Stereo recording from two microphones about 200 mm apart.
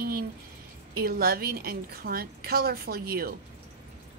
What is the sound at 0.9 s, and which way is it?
A woman's voice, 50° right (ahead or behind).